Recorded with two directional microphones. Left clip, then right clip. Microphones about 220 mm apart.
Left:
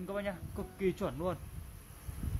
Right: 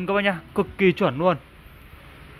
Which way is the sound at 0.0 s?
35° right (ahead or behind).